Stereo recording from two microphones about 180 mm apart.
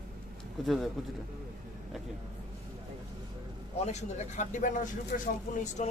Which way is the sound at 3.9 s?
40° left (ahead or behind).